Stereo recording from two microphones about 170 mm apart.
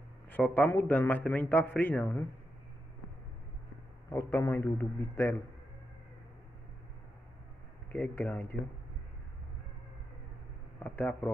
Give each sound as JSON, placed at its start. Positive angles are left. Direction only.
{"t": 0.3, "sound": "a man's voice", "side_deg": 10}
{"t": 4.1, "sound": "a man's voice", "side_deg": 15}
{"t": 7.9, "sound": "a man's voice", "side_deg": 10}
{"t": 10.8, "sound": "a man's voice", "side_deg": 10}